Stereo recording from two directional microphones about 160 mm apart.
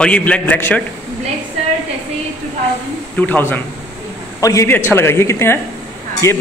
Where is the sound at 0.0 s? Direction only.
5° left (ahead or behind).